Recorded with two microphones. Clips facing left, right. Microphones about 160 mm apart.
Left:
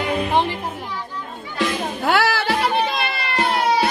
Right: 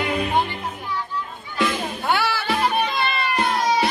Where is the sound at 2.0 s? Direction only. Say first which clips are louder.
Left 4 dB; 80° left.